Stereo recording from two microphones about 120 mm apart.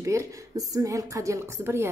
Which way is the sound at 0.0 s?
25° right (ahead or behind).